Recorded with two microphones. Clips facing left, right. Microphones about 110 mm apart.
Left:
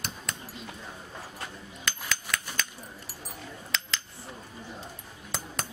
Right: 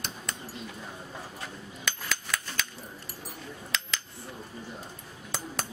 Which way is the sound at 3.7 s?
Centre (ahead or behind).